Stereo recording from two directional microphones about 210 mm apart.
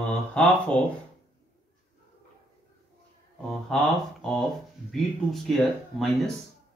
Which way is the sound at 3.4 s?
5° left (ahead or behind).